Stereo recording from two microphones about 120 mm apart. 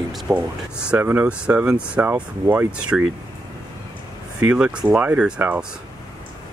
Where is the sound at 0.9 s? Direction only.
15° right (ahead or behind).